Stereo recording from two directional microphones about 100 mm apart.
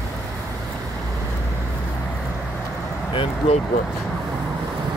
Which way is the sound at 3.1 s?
60° left (ahead or behind).